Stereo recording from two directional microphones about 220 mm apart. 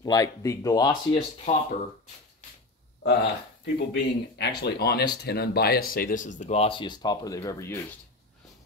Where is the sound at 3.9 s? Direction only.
50° left (ahead or behind); by 7.8 s 15° left (ahead or behind).